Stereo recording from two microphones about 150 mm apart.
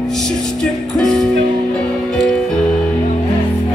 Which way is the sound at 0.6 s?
5° left (ahead or behind).